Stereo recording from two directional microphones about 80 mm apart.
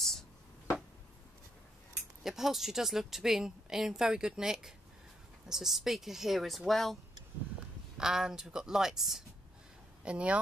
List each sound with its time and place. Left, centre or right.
2.2 s a woman's voice: centre
8.0 s speech: centre
10.0 s speech: centre